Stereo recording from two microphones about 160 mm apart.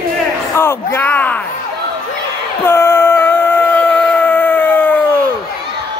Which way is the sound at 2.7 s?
15° left (ahead or behind).